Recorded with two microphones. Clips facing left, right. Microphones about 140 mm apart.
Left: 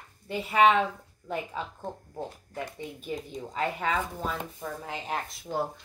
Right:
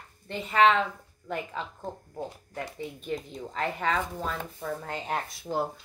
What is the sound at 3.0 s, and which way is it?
Speech, 5° left (ahead or behind).